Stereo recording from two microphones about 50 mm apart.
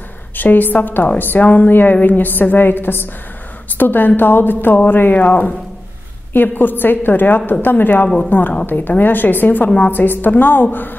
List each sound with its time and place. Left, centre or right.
0.4 s a woman's voice: left